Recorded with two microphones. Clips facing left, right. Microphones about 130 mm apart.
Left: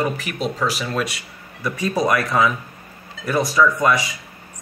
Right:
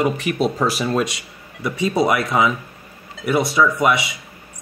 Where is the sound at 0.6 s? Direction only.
25° right (ahead or behind).